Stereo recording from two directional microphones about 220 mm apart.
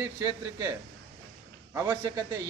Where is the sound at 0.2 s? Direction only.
15° right (ahead or behind).